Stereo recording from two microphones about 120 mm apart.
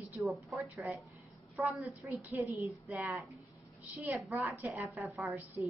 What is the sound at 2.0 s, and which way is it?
Speech, 5° right (ahead or behind).